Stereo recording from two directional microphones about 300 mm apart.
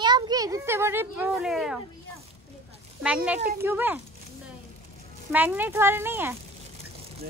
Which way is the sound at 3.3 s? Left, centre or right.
Right.